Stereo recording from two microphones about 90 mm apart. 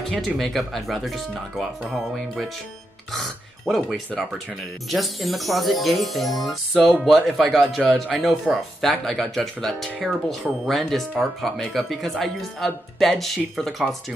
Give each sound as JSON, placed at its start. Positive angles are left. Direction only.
{"t": 0.1, "sound": "speech", "side_deg": 0}
{"t": 3.6, "sound": "a man's voice", "side_deg": 0}